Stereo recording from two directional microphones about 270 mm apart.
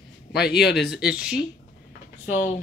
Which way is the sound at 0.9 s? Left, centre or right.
Centre.